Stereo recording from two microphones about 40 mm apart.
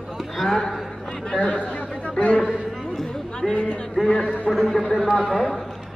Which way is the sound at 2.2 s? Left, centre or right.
Left.